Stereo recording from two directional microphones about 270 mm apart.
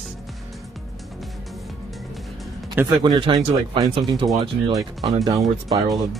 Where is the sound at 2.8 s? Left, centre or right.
Centre.